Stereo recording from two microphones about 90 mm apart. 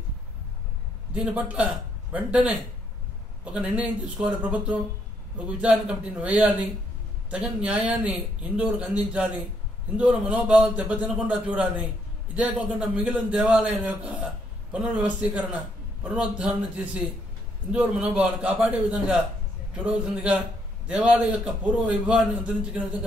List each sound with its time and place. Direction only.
1.1 s speech: 15° right (ahead or behind)
3.5 s speech: 10° right (ahead or behind)